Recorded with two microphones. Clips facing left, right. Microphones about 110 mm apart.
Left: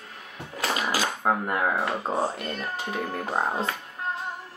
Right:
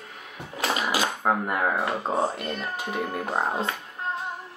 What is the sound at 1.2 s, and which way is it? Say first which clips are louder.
A child's voice: left 1 dB; 5° right (ahead or behind).